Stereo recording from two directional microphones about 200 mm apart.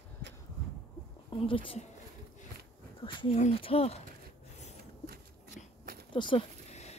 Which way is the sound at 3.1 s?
25° left (ahead or behind).